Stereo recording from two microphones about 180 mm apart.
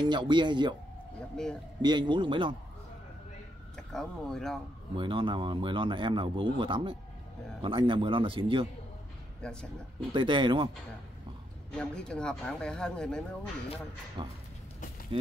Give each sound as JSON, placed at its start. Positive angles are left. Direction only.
{"t": 0.0, "sound": "speech", "side_deg": -25}
{"t": 1.3, "sound": "speech", "side_deg": 5}
{"t": 1.8, "sound": "speech", "side_deg": -25}
{"t": 3.7, "sound": "speech", "side_deg": 5}
{"t": 4.9, "sound": "speech", "side_deg": -25}
{"t": 9.4, "sound": "speech", "side_deg": 5}
{"t": 10.1, "sound": "speech", "side_deg": -25}
{"t": 11.7, "sound": "speech", "side_deg": 5}
{"t": 14.2, "sound": "speech", "side_deg": -25}